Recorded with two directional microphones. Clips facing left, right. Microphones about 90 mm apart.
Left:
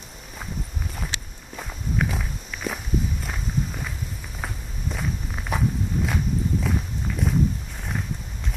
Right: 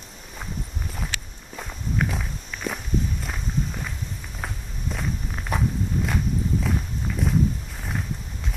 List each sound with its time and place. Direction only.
1.5 s walk: centre (ahead or behind)